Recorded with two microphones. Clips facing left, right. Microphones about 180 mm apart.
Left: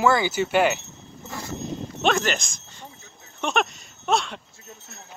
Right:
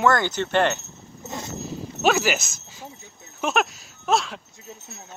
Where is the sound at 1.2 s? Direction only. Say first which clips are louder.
Right 2 dB; 20° right (ahead or behind).